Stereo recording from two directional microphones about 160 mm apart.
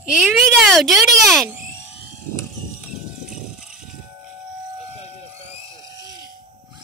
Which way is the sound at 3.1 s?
5° right (ahead or behind).